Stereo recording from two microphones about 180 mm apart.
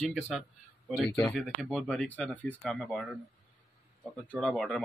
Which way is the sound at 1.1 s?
10° left (ahead or behind).